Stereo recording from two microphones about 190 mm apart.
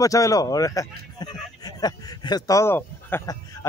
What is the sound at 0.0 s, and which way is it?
Speech, 15° left (ahead or behind).